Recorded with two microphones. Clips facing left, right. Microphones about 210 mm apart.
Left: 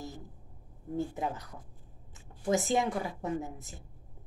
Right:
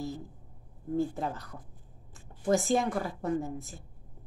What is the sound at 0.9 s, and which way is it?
A woman's voice, 20° left (ahead or behind).